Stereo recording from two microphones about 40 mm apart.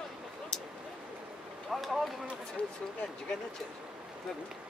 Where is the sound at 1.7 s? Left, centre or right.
Centre.